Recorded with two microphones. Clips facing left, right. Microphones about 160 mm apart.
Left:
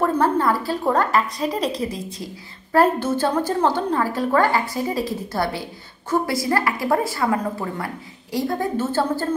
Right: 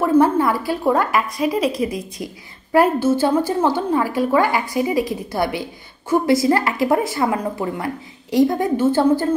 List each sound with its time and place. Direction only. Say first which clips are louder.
0.0 s a woman's voice: right 4 dB; 10° right (ahead or behind)